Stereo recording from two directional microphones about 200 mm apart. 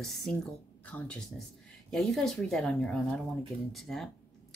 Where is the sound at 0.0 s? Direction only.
Centre (ahead or behind).